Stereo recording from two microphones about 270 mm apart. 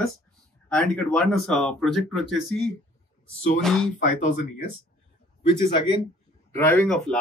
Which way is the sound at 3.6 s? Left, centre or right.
Centre.